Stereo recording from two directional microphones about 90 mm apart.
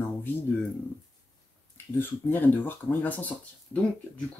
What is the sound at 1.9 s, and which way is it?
Speech, 20° left (ahead or behind).